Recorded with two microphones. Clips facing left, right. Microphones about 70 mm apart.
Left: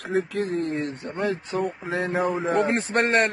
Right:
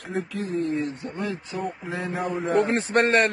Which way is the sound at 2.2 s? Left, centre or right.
Centre.